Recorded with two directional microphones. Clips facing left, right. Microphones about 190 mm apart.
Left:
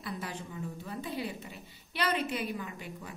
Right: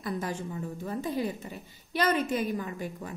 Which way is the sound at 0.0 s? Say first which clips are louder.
Right 6 dB; 45° right (ahead or behind).